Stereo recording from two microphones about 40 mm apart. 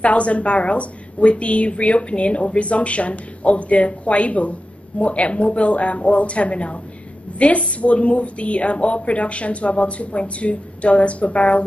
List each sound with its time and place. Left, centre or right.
0.0 s a woman's voice: left